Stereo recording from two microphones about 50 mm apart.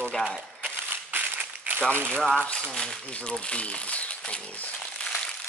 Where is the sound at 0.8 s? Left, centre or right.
Right.